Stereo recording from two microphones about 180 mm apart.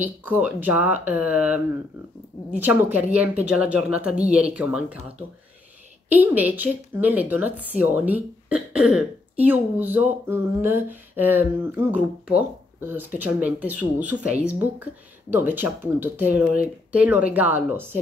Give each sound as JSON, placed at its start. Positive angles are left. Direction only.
{"t": 0.0, "sound": "a woman's voice", "side_deg": -10}
{"t": 6.0, "sound": "a woman's voice", "side_deg": -10}